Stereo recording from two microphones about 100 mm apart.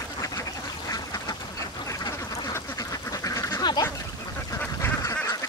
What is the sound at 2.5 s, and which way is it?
Duck, 35° left (ahead or behind).